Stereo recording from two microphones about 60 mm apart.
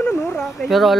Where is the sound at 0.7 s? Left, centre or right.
Centre.